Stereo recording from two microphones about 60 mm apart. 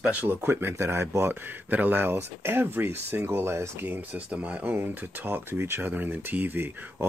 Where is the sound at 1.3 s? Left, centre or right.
Right.